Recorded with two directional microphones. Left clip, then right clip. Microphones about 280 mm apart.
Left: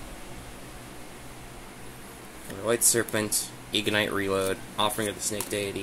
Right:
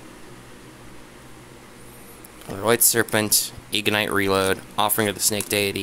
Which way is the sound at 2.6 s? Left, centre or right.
Right.